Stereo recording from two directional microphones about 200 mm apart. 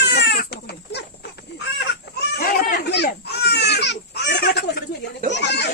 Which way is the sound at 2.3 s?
55° left (ahead or behind).